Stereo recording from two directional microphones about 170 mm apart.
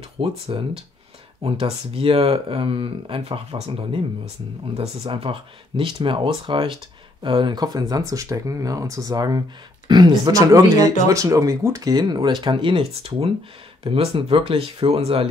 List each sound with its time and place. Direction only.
0.2 s speech: 30° right (ahead or behind)
1.4 s speech: 30° right (ahead or behind)